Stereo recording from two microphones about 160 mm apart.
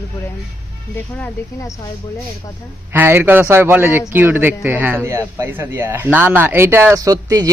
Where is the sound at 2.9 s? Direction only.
15° right (ahead or behind).